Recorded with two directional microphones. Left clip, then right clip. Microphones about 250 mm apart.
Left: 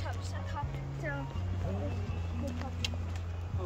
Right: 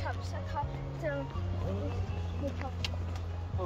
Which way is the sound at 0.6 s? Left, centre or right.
Right.